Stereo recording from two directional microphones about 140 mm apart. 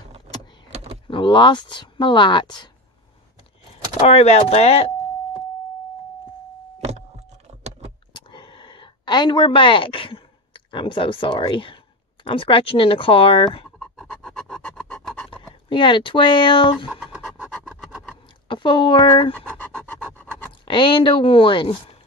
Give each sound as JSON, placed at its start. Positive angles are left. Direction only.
{"t": 1.0, "sound": "speech", "side_deg": 35}
{"t": 4.1, "sound": "speech", "side_deg": 50}
{"t": 8.1, "sound": "a sound", "side_deg": 35}
{"t": 12.3, "sound": "speech", "side_deg": 40}
{"t": 13.7, "sound": "a sound", "side_deg": 0}
{"t": 14.8, "sound": "filing", "side_deg": 5}
{"t": 15.7, "sound": "speech", "side_deg": 35}
{"t": 16.9, "sound": "scratch", "side_deg": -10}
{"t": 17.4, "sound": "wood", "side_deg": -5}
{"t": 18.5, "sound": "speech", "side_deg": 35}
{"t": 19.3, "sound": "scratch", "side_deg": 10}
{"t": 20.6, "sound": "speech", "side_deg": 35}